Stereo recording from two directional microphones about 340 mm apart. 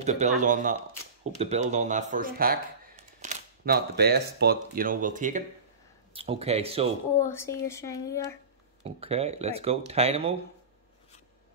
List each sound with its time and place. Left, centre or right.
0.0 s speech: centre
7.2 s speech: centre
8.8 s speech: centre